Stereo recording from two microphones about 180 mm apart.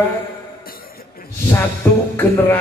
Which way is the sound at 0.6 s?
55° left (ahead or behind).